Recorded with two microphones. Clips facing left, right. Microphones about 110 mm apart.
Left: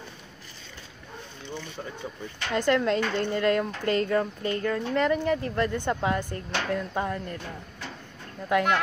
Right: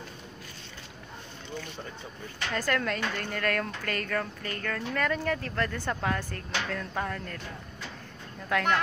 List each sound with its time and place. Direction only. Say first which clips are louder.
2.5 s speech: left 7 dB; 20° left (ahead or behind)
8.5 s speech: left 4 dB; 15° left (ahead or behind)